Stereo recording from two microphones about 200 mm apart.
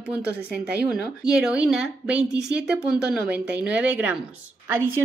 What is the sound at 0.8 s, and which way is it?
Speech, 5° right (ahead or behind).